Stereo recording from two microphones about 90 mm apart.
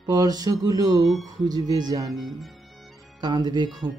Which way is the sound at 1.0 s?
Centre (ahead or behind).